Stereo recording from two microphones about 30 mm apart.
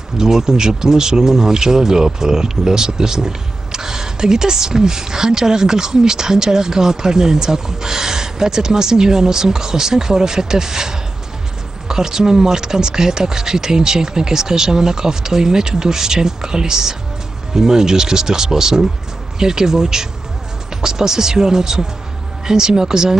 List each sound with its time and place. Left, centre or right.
0.2 s speech: right